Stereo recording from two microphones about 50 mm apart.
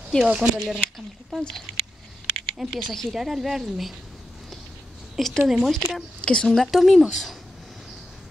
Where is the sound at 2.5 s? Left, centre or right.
Centre.